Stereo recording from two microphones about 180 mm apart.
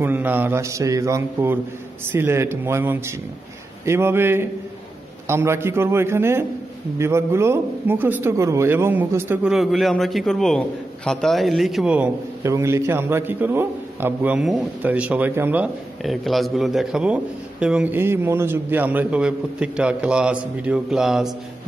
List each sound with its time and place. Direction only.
0.0 s a man's voice: 10° right (ahead or behind)